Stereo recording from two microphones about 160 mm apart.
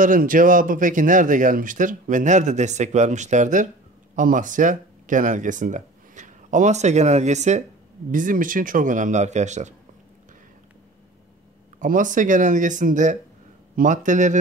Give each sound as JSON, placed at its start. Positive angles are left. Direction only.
{"t": 0.0, "sound": "speech", "side_deg": -60}
{"t": 11.8, "sound": "speech", "side_deg": -55}